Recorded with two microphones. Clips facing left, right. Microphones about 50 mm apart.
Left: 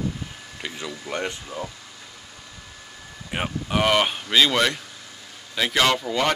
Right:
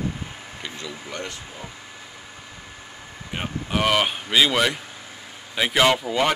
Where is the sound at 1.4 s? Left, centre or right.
Right.